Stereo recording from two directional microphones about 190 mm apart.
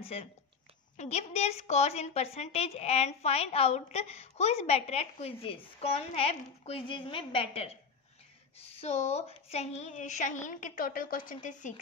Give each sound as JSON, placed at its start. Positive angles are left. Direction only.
{"t": 0.0, "sound": "a woman's voice", "side_deg": 30}